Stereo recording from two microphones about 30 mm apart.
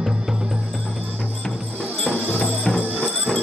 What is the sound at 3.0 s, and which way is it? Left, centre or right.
Music, centre.